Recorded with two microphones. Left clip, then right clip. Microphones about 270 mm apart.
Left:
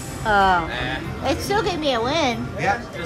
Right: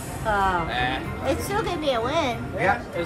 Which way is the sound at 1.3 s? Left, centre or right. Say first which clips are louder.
Left 4 dB; left.